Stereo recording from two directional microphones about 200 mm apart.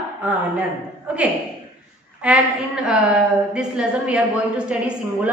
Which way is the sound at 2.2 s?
5° right (ahead or behind).